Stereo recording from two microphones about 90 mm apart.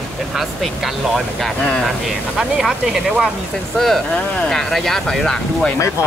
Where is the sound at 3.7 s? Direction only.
5° left (ahead or behind).